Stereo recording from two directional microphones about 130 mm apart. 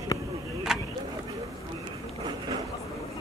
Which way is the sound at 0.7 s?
5° right (ahead or behind).